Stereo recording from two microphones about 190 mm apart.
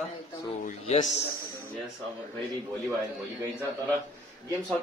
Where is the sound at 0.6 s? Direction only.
35° left (ahead or behind).